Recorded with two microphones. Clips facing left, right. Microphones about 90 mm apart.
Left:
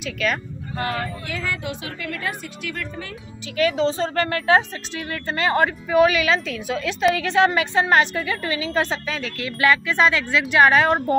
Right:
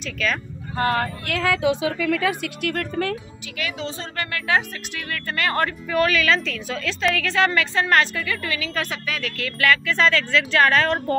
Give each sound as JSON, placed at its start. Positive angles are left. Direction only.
{"t": 0.0, "sound": "speech", "side_deg": 5}
{"t": 0.7, "sound": "speech", "side_deg": -45}
{"t": 1.2, "sound": "speech", "side_deg": -85}
{"t": 2.4, "sound": "speech", "side_deg": -55}
{"t": 3.5, "sound": "a woman's voice", "side_deg": 35}